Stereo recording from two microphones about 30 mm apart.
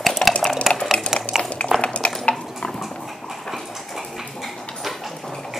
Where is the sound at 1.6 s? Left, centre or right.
Left.